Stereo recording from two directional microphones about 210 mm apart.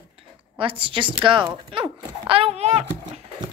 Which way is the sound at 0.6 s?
25° right (ahead or behind).